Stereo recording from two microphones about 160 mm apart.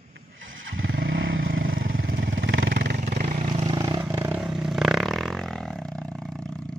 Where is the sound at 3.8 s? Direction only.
25° right (ahead or behind).